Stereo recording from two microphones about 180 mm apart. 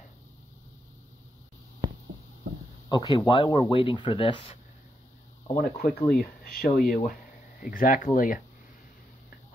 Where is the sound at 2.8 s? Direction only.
25° left (ahead or behind).